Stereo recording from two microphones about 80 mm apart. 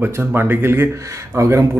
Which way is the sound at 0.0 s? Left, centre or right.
Right.